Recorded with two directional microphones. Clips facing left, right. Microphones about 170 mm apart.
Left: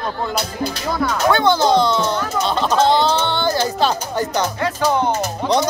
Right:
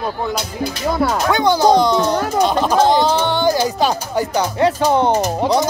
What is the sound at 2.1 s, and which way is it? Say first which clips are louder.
Speech: right 4 dB; 35° right (ahead or behind).